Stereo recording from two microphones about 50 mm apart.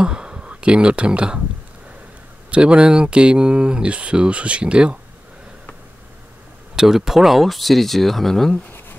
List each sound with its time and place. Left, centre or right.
0.0 s speech: centre
2.5 s speech: right
6.7 s speech: centre